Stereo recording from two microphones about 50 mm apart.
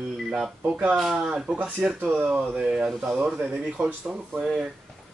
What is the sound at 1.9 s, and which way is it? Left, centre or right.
Speech, right.